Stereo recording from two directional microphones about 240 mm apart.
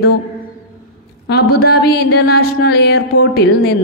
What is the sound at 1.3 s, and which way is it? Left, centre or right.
Speech, left.